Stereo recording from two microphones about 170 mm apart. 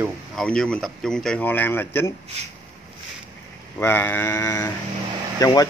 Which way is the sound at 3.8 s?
10° left (ahead or behind).